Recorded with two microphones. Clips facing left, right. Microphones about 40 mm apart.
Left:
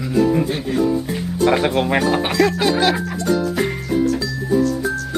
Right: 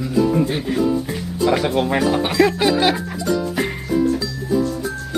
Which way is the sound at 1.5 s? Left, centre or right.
Centre.